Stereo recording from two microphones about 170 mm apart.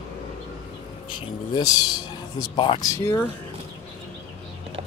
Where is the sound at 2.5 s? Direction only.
30° left (ahead or behind).